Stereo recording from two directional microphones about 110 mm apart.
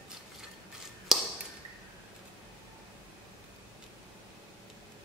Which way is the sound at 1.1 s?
Centre (ahead or behind).